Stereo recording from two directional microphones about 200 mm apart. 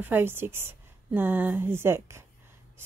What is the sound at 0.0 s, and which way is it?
A woman's voice, 10° right (ahead or behind).